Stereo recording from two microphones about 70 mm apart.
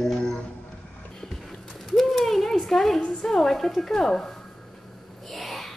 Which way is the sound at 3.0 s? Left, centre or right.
Centre.